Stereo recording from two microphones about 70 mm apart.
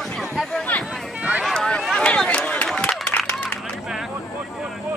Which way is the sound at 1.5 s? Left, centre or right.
Centre.